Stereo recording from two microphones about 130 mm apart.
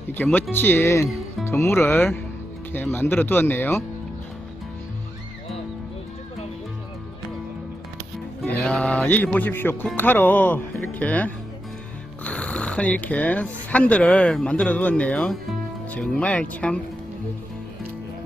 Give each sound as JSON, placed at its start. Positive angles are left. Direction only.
{"t": 0.1, "sound": "speech", "side_deg": 15}
{"t": 8.5, "sound": "speech", "side_deg": 5}